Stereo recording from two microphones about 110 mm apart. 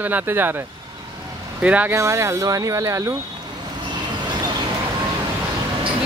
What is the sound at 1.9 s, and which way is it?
Speech, 25° right (ahead or behind).